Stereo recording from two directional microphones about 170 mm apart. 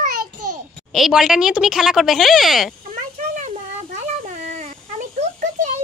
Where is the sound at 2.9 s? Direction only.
45° right (ahead or behind).